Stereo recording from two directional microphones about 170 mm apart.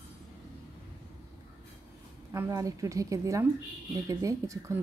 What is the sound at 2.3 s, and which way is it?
Speech, 20° right (ahead or behind).